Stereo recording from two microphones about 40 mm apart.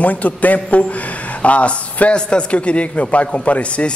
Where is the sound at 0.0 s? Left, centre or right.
Left.